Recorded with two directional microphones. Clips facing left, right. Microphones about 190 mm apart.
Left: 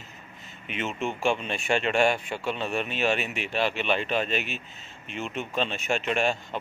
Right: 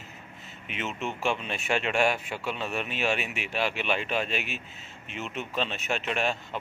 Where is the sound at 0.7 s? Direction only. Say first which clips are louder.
Left 3 dB; centre (ahead or behind).